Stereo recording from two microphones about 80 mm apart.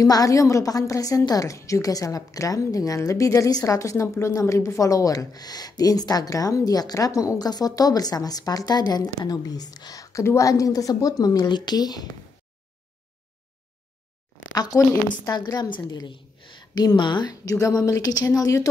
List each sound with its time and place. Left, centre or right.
0.0 s a woman's voice: left
14.5 s a woman's voice: left
15.7 s a sound: left
16.8 s a woman's voice: left
17.3 s speech: left
18.1 s a woman's voice: left